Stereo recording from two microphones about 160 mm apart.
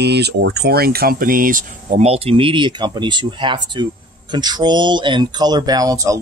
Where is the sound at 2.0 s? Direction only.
40° right (ahead or behind).